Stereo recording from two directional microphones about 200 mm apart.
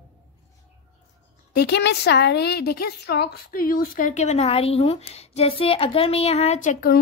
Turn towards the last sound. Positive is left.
turn(degrees=45)  # may be behind; listen again after turning